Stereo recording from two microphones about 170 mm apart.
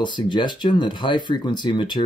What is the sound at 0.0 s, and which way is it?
Speech, 25° left (ahead or behind).